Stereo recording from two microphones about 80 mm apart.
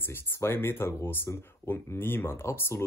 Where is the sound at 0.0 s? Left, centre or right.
Left.